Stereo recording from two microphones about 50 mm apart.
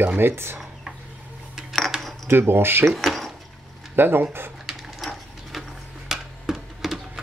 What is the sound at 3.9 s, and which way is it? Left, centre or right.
Speech, right.